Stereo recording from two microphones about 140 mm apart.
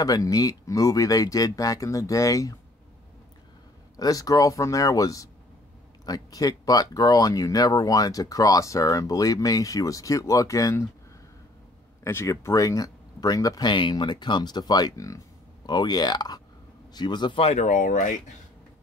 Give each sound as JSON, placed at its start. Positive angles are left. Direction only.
{"t": 0.0, "sound": "speech", "side_deg": 25}
{"t": 3.9, "sound": "speech", "side_deg": 25}
{"t": 12.0, "sound": "a man's voice", "side_deg": 20}
{"t": 17.4, "sound": "speech", "side_deg": 50}
{"t": 17.6, "sound": "speech", "side_deg": 70}